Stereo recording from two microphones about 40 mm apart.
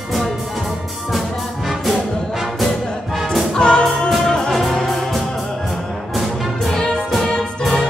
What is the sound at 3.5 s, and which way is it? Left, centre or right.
Music, centre.